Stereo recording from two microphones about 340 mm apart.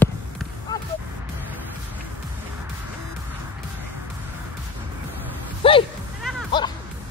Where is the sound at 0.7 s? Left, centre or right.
Centre.